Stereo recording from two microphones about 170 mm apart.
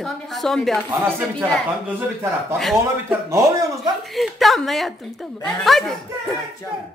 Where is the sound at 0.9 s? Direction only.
15° right (ahead or behind).